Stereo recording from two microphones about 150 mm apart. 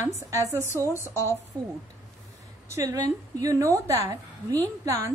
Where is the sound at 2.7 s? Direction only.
20° right (ahead or behind).